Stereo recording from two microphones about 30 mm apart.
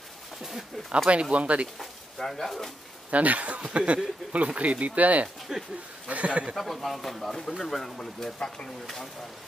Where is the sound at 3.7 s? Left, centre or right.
Right.